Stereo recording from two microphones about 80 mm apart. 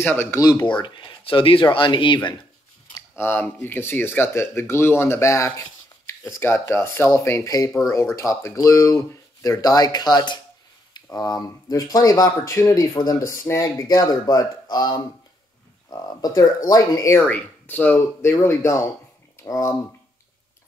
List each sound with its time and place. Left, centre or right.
0.0 s speech: left
0.4 s speech: left
0.7 s speech: left
3.2 s speech: left
5.6 s rub: left
6.7 s speech: left
17.2 s speech: left
18.3 s speech: left